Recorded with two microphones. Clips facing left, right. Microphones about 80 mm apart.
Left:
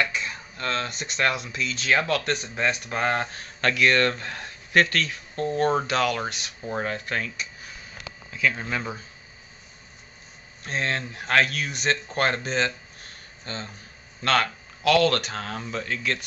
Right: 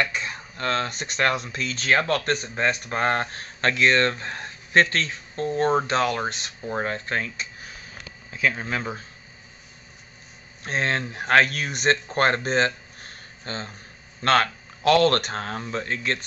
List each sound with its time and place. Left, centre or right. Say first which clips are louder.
0.1 s speech: right 1 dB; right
8.5 s speech: right 1 dB; centre
10.6 s speech: right 3 dB; right
14.2 s speech: right 3 dB; right